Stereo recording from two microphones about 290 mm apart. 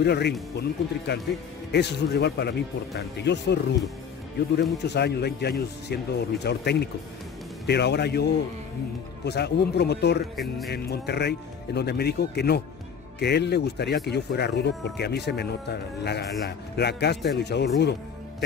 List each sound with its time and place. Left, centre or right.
0.0 s speech: left
4.8 s speech: left
10.3 s speech: centre
10.7 s speech: left